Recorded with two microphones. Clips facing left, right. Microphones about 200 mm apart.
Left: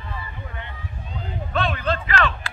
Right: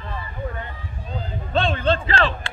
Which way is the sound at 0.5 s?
40° right (ahead or behind).